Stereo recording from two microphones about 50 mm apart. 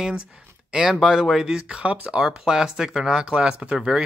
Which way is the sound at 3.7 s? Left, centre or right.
Centre.